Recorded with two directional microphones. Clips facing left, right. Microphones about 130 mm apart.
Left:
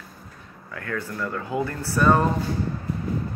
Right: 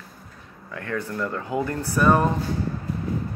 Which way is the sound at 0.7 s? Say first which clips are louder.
Right 2 dB; 25° right (ahead or behind).